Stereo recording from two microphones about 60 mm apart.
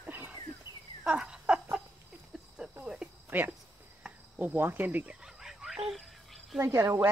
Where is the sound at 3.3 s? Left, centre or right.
Right.